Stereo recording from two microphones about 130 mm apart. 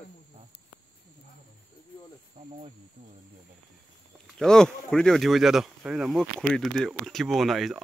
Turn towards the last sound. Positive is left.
turn(degrees=0)  # may be behind; listen again after turning